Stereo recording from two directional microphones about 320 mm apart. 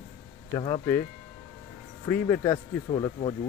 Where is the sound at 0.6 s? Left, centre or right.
Centre.